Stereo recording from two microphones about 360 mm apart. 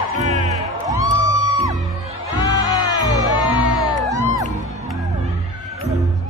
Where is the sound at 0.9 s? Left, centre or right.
Centre.